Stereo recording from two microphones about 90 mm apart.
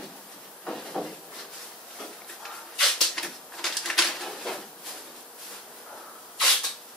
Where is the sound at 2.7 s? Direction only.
5° left (ahead or behind).